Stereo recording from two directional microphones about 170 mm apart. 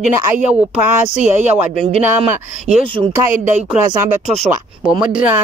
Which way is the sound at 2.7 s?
40° right (ahead or behind).